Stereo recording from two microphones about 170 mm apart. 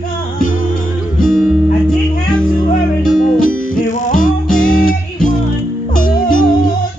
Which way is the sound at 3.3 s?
50° left (ahead or behind).